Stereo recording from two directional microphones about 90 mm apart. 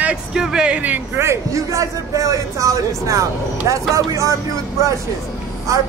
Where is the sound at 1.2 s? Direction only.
35° right (ahead or behind).